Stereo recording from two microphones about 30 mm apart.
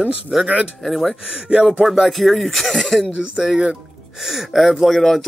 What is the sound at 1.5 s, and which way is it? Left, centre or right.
Speech, right.